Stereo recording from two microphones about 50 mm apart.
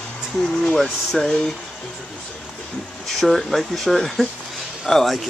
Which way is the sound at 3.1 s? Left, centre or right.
Centre.